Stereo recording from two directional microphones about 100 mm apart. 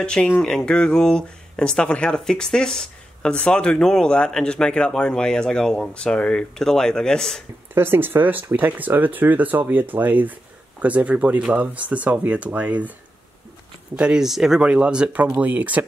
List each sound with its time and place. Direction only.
0.0 s speech: 10° left (ahead or behind)
7.7 s speech: 20° right (ahead or behind)
13.9 s speech: 10° right (ahead or behind)